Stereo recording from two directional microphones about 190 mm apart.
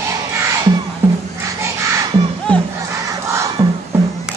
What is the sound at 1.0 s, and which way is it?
Crowd, 10° right (ahead or behind).